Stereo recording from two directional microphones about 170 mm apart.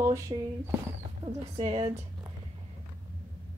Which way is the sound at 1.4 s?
40° right (ahead or behind).